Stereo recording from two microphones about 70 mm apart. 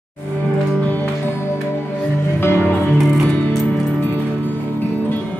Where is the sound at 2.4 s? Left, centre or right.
Left.